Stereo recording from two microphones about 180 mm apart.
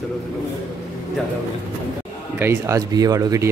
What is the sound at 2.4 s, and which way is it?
Speech, 15° right (ahead or behind).